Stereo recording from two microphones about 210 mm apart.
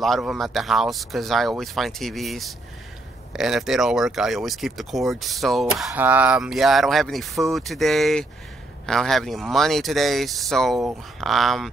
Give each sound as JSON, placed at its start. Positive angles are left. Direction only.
{"t": 0.0, "sound": "speech", "side_deg": 0}